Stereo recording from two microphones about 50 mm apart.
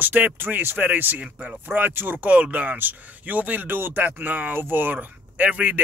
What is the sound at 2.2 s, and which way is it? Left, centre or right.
Speech, right.